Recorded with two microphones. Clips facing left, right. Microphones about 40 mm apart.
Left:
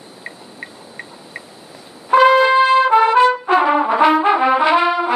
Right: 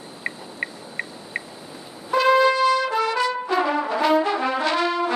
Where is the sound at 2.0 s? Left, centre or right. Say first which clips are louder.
Left 6 dB; left.